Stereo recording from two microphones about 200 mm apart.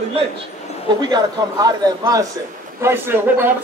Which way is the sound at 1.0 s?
20° right (ahead or behind).